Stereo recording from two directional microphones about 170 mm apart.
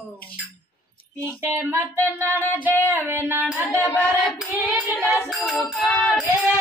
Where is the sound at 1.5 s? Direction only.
15° right (ahead or behind).